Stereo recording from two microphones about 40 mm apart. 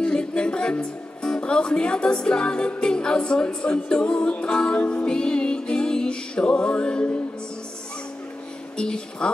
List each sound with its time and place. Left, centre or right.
0.0 s speech: left
8.7 s speech: left